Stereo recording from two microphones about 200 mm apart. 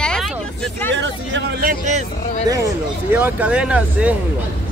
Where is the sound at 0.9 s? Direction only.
65° right (ahead or behind).